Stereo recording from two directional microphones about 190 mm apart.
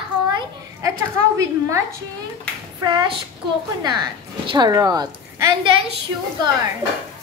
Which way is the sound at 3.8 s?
20° right (ahead or behind).